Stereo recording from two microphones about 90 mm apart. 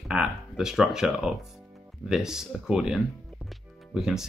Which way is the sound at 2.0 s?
5° right (ahead or behind).